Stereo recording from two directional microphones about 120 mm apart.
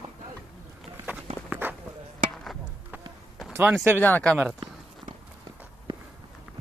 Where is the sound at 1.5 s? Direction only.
15° right (ahead or behind).